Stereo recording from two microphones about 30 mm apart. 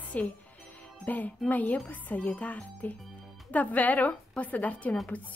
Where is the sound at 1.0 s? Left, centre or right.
Left.